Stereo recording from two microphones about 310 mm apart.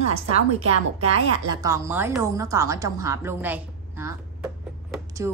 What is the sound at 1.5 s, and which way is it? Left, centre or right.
A woman's voice, centre.